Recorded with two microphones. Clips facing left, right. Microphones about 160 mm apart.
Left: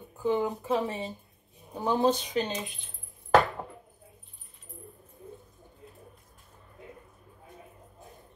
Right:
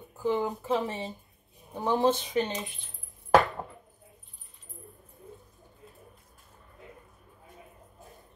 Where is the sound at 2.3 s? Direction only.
20° left (ahead or behind).